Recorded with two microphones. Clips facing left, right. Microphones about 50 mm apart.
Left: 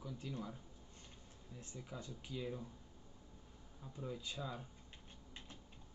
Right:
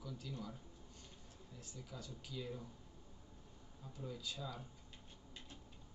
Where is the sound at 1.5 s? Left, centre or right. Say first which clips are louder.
Left 3 dB; left.